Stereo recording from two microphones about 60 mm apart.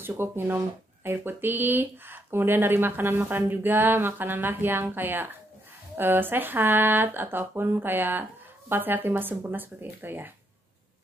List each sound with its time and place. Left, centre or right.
0.0 s speech: right